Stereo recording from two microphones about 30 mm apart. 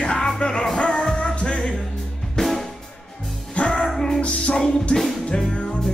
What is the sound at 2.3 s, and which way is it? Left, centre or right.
Music, centre.